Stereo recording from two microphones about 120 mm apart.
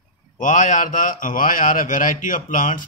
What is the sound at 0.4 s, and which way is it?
Speech, 90° left.